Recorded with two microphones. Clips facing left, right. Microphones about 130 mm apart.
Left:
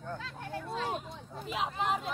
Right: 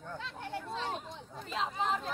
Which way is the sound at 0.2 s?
25° right (ahead or behind).